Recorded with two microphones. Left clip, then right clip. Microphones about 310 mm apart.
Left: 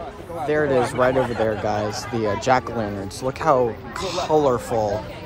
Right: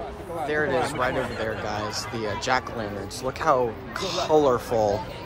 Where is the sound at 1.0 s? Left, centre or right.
Centre.